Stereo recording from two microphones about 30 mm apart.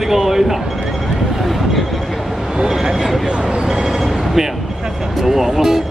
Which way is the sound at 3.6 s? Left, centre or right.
Centre.